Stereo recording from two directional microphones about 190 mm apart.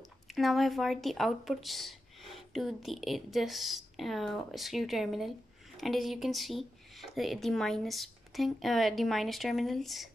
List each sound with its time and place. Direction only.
0.3 s speech: centre (ahead or behind)